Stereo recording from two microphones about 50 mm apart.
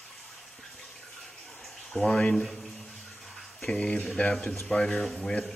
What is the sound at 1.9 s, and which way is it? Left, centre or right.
A man's voice, centre.